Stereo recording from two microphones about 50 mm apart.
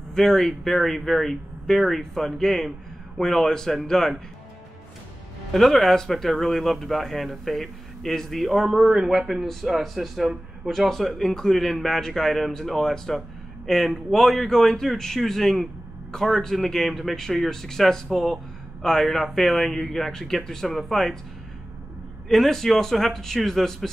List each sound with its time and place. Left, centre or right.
0.1 s a man's voice: centre
5.5 s a man's voice: centre
22.3 s speech: centre